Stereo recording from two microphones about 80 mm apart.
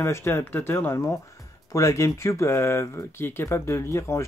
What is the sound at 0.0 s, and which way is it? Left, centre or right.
Speech, left.